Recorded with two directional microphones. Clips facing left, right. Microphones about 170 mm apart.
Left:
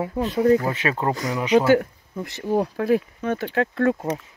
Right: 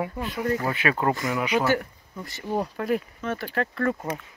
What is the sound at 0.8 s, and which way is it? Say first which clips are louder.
Speech: left 1 dB; 25° left (ahead or behind).